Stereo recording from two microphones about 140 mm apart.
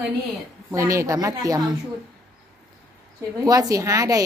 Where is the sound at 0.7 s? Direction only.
20° right (ahead or behind).